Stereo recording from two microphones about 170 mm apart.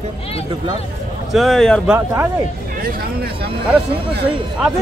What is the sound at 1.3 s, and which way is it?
Music, centre (ahead or behind).